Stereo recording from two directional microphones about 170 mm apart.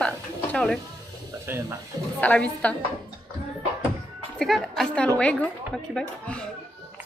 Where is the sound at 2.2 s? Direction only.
10° left (ahead or behind).